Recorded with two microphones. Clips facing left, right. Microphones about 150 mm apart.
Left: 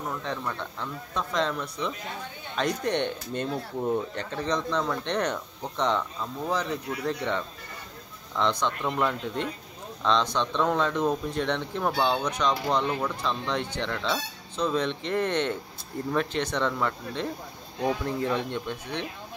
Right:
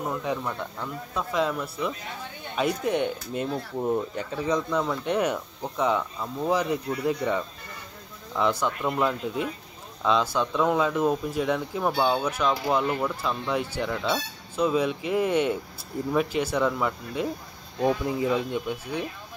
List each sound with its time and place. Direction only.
0.0 s speech: 10° right (ahead or behind)